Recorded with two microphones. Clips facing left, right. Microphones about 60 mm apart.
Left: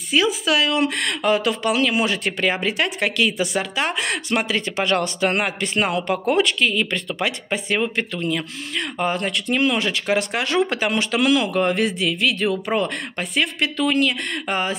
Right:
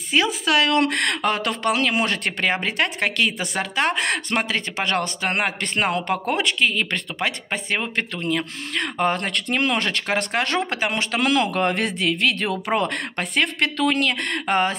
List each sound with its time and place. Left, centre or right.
0.1 s speech: right
6.7 s speech: right
10.7 s speech: right